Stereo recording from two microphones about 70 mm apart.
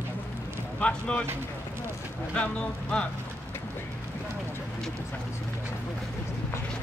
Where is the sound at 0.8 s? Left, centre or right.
Centre.